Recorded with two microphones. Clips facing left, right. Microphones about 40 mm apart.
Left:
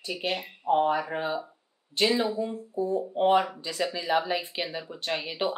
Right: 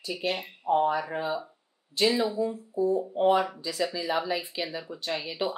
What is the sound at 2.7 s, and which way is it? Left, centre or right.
Speech, left.